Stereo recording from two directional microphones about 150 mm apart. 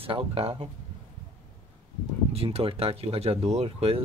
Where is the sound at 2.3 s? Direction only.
40° right (ahead or behind).